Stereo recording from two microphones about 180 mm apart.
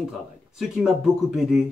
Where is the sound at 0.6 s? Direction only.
Centre (ahead or behind).